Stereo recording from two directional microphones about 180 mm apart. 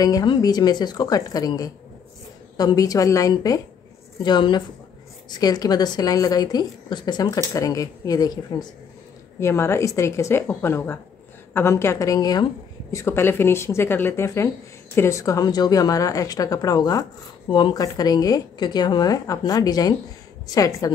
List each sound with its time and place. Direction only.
0.0 s a woman's voice: 20° left (ahead or behind)